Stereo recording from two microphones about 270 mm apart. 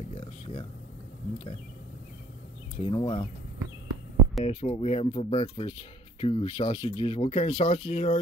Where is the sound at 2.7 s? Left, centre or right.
Centre.